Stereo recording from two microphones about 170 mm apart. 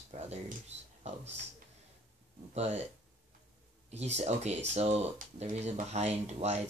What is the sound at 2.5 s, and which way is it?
Speech, 40° right (ahead or behind).